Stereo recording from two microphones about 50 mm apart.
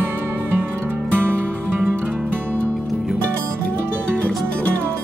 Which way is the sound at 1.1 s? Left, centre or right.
Right.